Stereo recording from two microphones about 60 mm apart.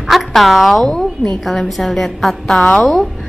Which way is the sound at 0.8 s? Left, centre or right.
Centre.